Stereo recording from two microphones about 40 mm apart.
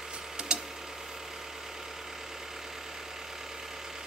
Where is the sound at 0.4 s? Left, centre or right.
Right.